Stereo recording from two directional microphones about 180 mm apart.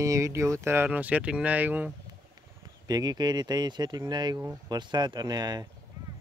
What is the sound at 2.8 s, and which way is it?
Speech, 20° right (ahead or behind).